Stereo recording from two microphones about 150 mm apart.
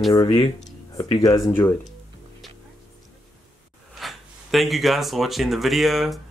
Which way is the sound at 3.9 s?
Centre (ahead or behind).